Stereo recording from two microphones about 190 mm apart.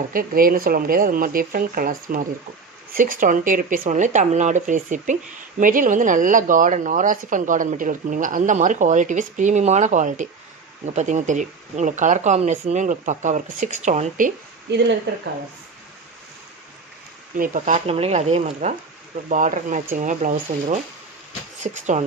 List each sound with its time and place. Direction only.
0.1 s speech: 50° right (ahead or behind)
14.7 s speech: 65° right (ahead or behind)
17.4 s speech: 40° right (ahead or behind)